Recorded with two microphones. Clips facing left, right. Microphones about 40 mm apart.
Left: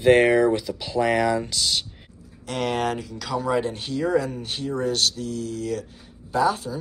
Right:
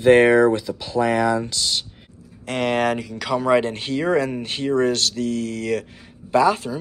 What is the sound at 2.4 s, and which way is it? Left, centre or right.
Speech, right.